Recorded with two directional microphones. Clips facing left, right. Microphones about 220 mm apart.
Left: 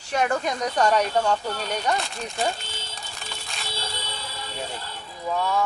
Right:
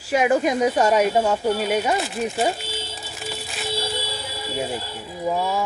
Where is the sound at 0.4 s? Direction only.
5° right (ahead or behind).